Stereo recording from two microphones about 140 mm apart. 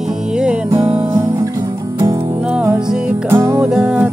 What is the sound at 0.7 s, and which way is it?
Music, 20° right (ahead or behind).